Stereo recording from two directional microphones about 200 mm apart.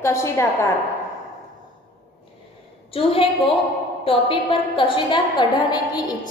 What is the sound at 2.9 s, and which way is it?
A woman's voice, 30° left (ahead or behind).